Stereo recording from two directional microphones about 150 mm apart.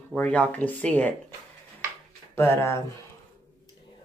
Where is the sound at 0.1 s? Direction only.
10° left (ahead or behind).